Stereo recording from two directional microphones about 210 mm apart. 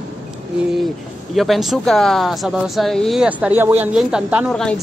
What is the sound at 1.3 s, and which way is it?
Speech, centre (ahead or behind).